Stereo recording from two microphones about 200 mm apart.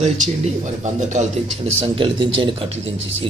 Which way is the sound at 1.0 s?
35° right (ahead or behind).